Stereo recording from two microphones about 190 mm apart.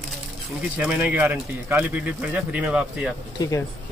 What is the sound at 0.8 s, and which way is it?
Speech, 10° right (ahead or behind).